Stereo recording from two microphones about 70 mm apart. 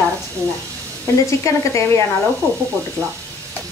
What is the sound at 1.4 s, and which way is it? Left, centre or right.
Speech, left.